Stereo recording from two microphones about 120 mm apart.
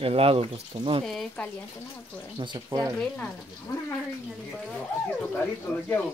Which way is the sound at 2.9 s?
10° left (ahead or behind).